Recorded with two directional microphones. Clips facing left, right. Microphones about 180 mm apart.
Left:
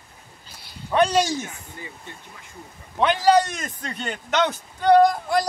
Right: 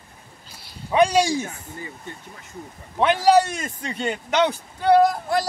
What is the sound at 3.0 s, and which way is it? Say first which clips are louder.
Speech: right 1 dB; 5° right (ahead or behind).